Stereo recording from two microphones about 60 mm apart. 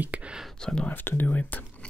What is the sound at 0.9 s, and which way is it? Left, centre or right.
Speech, left.